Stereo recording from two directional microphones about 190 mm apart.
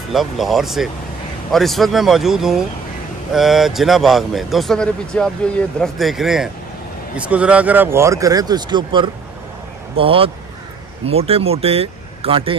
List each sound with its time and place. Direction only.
0.1 s speech: centre (ahead or behind); by 12.5 s 30° right (ahead or behind)